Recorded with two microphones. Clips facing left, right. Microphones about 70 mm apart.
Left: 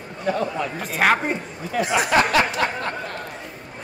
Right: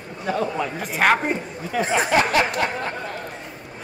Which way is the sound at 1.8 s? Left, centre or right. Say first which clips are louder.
Even; right.